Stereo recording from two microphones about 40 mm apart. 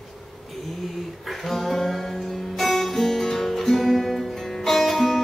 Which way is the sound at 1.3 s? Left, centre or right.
Centre.